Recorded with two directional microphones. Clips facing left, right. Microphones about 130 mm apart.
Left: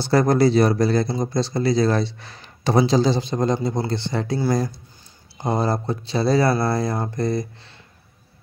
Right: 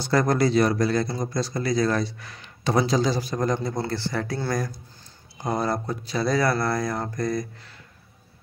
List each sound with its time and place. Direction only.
0.0 s speech: 30° left (ahead or behind)